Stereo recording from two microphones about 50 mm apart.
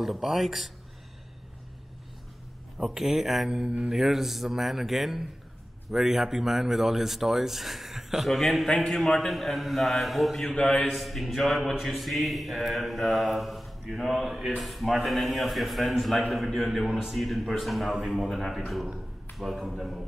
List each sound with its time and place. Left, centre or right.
0.0 s speech: centre
2.8 s speech: centre
3.4 s speech: centre
3.9 s speech: centre
10.6 s speech: centre
11.0 s speech: centre